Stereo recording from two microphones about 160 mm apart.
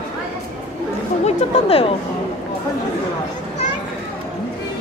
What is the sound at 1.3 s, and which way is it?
Speech, 35° left (ahead or behind).